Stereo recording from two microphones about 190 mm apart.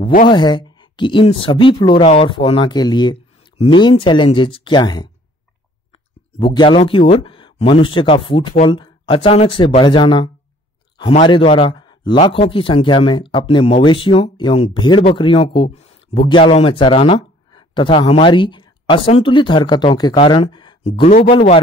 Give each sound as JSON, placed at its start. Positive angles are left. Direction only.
{"t": 0.3, "sound": "speech", "side_deg": 25}
{"t": 6.4, "sound": "speech", "side_deg": 25}